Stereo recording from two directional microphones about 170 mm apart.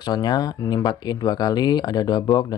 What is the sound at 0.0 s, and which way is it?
Speech, 25° left (ahead or behind).